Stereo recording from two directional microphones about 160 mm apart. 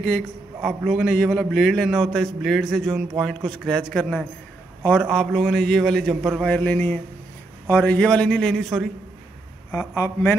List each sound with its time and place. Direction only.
0.6 s a man's voice: centre (ahead or behind)
9.9 s speech: 20° left (ahead or behind)